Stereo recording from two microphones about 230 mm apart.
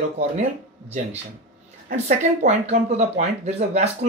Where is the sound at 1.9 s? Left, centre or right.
Right.